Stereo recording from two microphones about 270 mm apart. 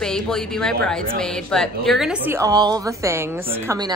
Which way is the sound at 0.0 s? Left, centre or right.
Centre.